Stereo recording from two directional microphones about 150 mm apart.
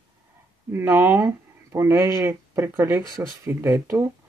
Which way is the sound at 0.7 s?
15° right (ahead or behind).